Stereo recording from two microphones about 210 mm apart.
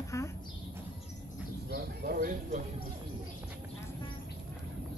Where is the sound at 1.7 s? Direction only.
50° right (ahead or behind).